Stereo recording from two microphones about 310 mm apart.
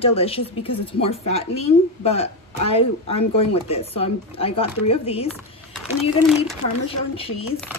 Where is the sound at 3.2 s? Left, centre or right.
Left.